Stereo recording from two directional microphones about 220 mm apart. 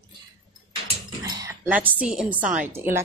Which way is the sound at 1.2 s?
15° right (ahead or behind).